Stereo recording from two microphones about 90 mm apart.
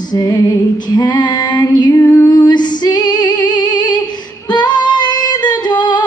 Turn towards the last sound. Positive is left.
turn(degrees=55)  # may be behind; listen again after turning